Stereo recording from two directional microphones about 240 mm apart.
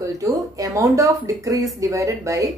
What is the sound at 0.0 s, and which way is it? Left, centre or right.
A woman's voice, centre.